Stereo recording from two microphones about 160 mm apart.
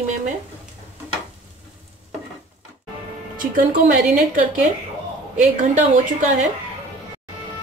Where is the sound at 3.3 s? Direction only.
60° right (ahead or behind).